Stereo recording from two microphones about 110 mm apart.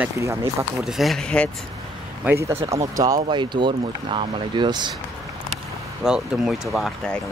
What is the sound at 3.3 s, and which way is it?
Speech, 45° right (ahead or behind).